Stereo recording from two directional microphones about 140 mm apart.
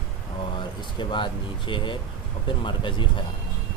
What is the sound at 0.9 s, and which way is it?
Speech, 35° left (ahead or behind).